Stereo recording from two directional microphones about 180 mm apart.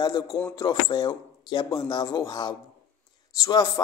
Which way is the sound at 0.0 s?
25° left (ahead or behind).